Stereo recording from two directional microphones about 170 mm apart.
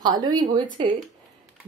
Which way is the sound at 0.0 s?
25° right (ahead or behind).